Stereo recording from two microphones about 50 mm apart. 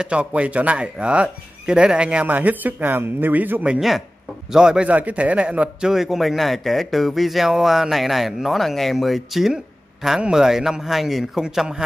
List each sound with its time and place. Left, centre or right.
0.0 s speech: right
2.2 s a man's voice: right
4.5 s speech: centre
4.8 s speech: right
5.9 s speech: centre